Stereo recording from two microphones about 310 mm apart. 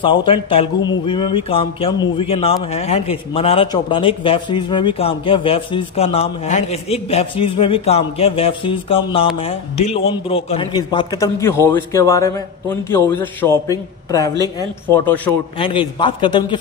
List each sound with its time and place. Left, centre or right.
0.0 s a man's voice: centre